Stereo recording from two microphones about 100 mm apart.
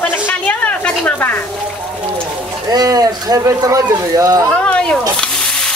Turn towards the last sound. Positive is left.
turn(degrees=10)  # may be behind; listen again after turning